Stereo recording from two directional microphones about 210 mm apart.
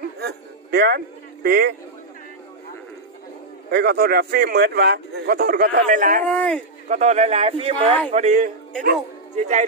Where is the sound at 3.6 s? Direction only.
50° right (ahead or behind).